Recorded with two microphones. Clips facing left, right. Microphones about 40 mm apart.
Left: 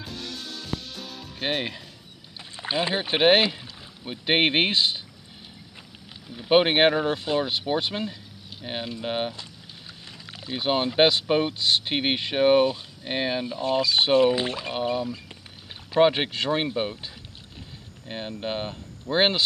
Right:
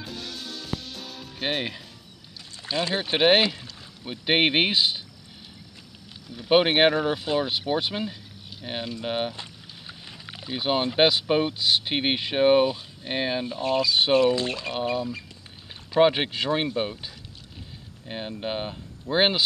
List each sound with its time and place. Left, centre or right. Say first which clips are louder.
0.0 s music: even; centre
2.3 s speech: left 1 dB; left; by 5.0 s centre
6.5 s speech: even; centre
9.3 s vehicle: right 1 dB; right
10.0 s rowboat: even; centre
10.5 s speech: even; centre
14.2 s speech: left 1 dB; left; by 19.4 s centre